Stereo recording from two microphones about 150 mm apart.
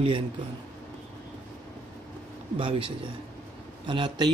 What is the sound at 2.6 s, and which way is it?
Speech, 35° right (ahead or behind).